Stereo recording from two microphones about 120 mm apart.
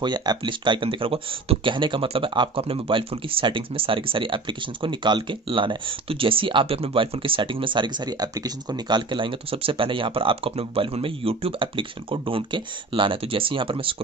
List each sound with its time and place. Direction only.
0.0 s speech: 35° right (ahead or behind)